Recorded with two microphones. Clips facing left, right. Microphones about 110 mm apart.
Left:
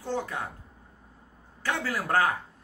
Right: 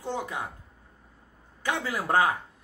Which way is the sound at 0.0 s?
15° right (ahead or behind).